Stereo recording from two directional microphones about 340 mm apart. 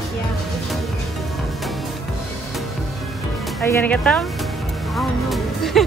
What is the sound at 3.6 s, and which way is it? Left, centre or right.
Speech, centre.